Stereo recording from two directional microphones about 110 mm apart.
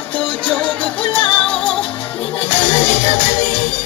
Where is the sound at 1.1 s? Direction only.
50° left (ahead or behind).